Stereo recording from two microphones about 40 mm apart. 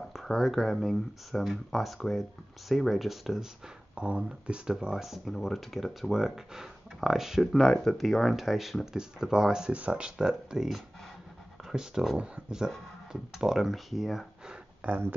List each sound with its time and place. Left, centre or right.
0.1 s speech: centre
3.9 s speech: right
4.9 s speech: centre
6.1 s speech: centre
7.9 s speech: centre
9.7 s speech: right
10.1 s speech: centre